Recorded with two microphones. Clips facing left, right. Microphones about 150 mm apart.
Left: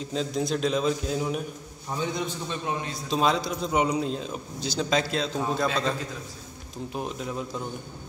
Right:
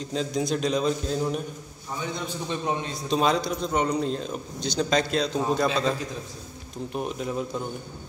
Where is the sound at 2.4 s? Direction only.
20° right (ahead or behind).